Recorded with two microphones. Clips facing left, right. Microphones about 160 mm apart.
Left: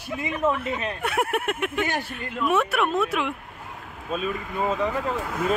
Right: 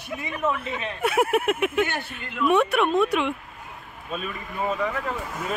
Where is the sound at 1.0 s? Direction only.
Centre (ahead or behind).